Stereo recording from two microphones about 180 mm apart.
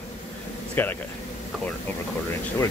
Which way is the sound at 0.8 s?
10° left (ahead or behind).